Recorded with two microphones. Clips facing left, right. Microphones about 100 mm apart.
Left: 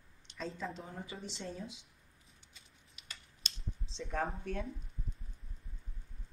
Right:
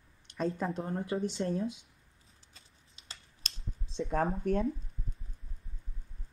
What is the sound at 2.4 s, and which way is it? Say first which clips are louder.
Typing: right 1 dB; 30° right (ahead or behind).